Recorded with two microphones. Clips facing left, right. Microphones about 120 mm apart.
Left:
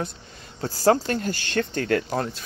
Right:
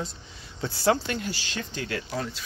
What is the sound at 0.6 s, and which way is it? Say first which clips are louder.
Speech: left 4 dB; 40° left (ahead or behind).